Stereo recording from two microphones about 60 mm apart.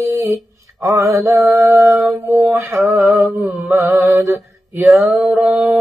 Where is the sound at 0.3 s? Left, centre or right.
Right.